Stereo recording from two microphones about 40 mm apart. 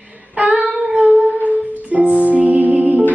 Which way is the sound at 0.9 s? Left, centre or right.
Right.